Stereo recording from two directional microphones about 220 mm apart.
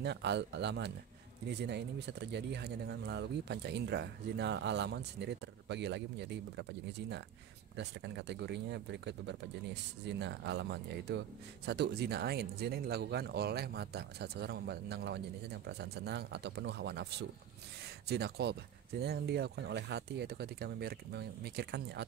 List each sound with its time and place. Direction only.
0.0 s speech: 50° right (ahead or behind)